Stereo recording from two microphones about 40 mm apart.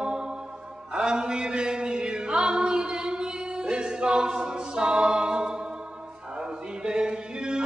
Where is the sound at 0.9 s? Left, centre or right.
Right.